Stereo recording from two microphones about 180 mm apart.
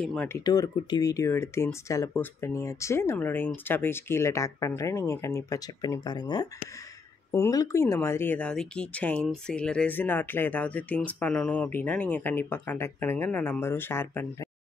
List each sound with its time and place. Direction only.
0.0 s speech: 5° left (ahead or behind)
0.4 s speech: 20° left (ahead or behind)